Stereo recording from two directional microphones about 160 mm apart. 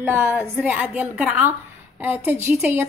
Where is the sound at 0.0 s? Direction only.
15° right (ahead or behind).